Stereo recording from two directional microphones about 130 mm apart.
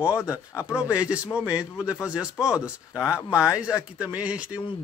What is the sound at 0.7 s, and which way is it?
Speech, 10° right (ahead or behind).